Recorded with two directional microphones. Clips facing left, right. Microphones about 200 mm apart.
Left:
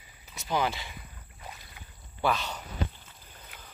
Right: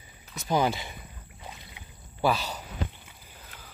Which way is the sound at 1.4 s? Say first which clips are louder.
Right 1 dB; 20° right (ahead or behind).